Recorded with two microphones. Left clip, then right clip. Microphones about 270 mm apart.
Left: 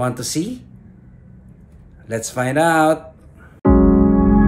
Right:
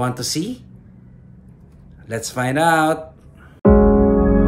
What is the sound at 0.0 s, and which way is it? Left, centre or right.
Speech, centre.